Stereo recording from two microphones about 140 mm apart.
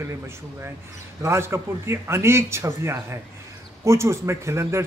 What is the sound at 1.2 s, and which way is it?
A man's voice, 20° right (ahead or behind).